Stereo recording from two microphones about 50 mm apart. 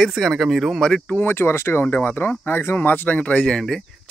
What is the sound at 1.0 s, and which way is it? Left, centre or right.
Speech, left.